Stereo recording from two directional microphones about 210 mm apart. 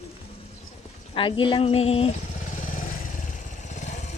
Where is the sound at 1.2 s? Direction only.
25° left (ahead or behind); by 2.8 s 40° left (ahead or behind).